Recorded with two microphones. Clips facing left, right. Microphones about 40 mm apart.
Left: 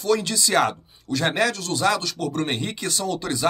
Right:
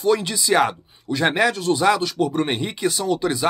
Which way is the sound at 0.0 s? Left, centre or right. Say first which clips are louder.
Right 2 dB; centre.